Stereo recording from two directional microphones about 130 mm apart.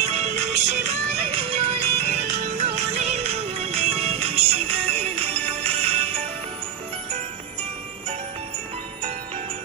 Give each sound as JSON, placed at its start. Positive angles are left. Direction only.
{"t": 0.0, "sound": "music", "side_deg": -55}